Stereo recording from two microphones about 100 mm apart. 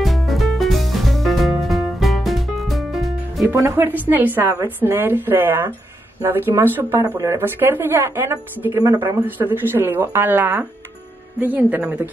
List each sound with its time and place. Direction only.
0.0 s music: centre (ahead or behind)
3.4 s speech: 25° right (ahead or behind)